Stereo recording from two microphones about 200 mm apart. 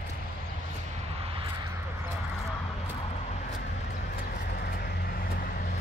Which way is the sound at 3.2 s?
35° left (ahead or behind).